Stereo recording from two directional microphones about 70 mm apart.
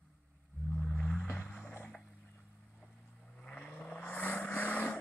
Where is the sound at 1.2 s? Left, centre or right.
Left.